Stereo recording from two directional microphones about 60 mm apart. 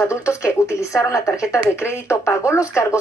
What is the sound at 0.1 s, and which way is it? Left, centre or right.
A woman's voice, left.